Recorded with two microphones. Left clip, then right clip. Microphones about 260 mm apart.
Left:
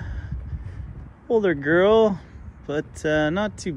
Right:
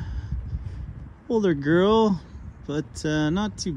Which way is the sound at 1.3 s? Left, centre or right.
Right.